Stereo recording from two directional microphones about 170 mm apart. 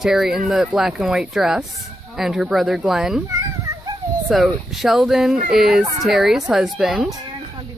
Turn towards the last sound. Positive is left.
turn(degrees=0)  # may be behind; listen again after turning